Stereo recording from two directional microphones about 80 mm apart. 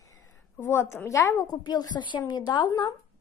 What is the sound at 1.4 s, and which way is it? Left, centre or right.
A woman's voice, left.